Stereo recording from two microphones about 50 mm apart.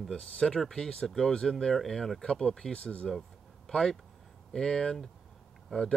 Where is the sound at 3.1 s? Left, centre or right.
Centre.